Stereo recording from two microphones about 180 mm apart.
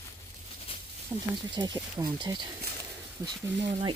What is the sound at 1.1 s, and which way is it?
Speech, 15° right (ahead or behind).